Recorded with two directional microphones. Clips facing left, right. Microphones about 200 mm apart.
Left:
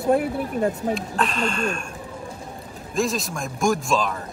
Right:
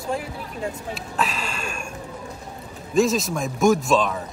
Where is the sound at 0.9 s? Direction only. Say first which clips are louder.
Left 3 dB; 5° right (ahead or behind).